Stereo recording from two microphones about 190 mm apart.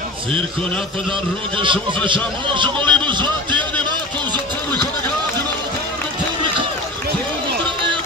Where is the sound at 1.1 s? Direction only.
25° right (ahead or behind).